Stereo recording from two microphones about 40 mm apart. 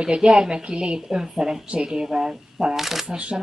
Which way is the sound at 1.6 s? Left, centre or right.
Right.